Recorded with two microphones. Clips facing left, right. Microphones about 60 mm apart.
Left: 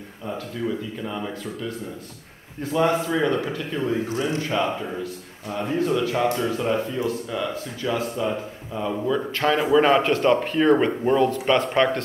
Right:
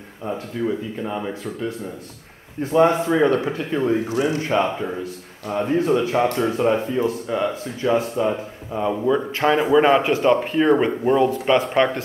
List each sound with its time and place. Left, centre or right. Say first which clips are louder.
0.7 s speech: right 3 dB; right
2.6 s speech: right 5 dB; right
8.2 s speech: right 4 dB; centre
9.4 s speech: right 2 dB; centre